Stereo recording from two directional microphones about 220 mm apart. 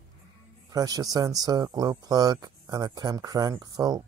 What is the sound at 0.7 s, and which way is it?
A man's voice, 15° right (ahead or behind).